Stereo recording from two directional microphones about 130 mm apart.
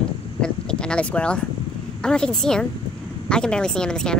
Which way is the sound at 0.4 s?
5° left (ahead or behind).